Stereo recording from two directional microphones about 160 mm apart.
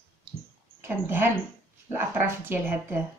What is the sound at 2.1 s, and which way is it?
Speech, 15° right (ahead or behind).